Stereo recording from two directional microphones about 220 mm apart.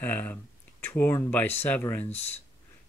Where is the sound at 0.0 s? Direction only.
10° left (ahead or behind).